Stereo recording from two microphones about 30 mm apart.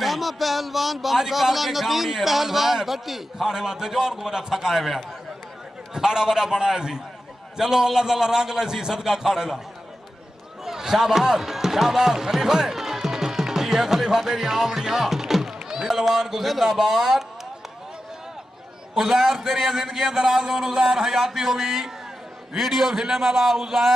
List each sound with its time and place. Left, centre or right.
0.0 s a man's voice: centre
10.6 s speech: centre
18.9 s a man's voice: centre